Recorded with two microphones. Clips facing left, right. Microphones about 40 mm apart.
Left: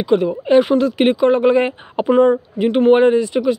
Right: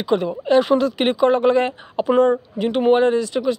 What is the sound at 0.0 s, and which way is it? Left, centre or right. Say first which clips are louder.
Speech: left 4 dB; centre.